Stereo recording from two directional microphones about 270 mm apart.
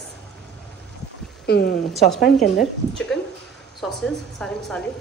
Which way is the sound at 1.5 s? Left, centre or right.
Left.